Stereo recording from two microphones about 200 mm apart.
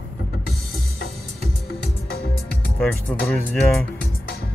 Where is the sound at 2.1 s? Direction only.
50° left (ahead or behind).